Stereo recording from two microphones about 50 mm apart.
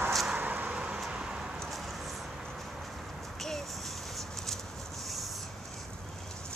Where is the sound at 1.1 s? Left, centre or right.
Centre.